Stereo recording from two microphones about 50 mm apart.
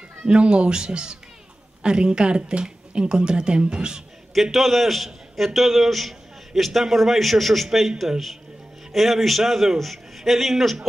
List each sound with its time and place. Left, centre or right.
0.2 s speech: centre
4.3 s a man's voice: centre
8.9 s a man's voice: centre